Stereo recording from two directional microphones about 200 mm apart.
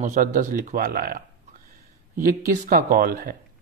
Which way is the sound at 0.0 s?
40° right (ahead or behind).